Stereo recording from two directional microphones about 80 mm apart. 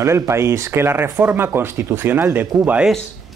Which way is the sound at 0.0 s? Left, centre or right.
Right.